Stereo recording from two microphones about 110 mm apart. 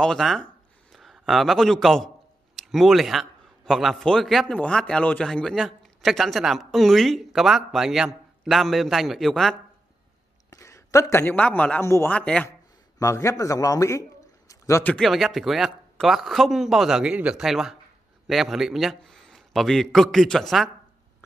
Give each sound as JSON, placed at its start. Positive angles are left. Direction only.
{"t": 0.0, "sound": "a man's voice", "side_deg": 5}
{"t": 10.5, "sound": "speech", "side_deg": 30}
{"t": 11.8, "sound": "a man's voice", "side_deg": 25}
{"t": 12.1, "sound": "speech", "side_deg": 10}
{"t": 13.0, "sound": "a man's voice", "side_deg": 25}
{"t": 15.0, "sound": "a man's voice", "side_deg": 0}